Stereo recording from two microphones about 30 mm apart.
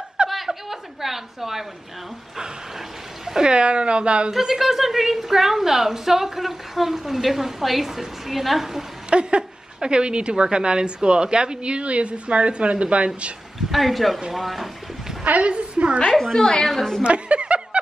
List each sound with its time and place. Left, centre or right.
0.5 s a sound: centre
3.4 s a woman's voice: right
4.3 s a woman's voice: centre
9.1 s a woman's voice: right
13.7 s a woman's voice: centre
15.2 s a woman's voice: right
16.3 s a woman's voice: left
16.6 s a woman's voice: centre
17.0 s speech: right